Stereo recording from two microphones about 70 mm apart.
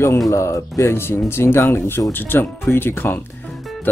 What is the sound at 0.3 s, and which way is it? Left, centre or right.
Speech, left.